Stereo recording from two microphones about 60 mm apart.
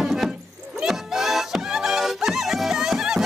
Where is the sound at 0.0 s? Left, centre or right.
Centre.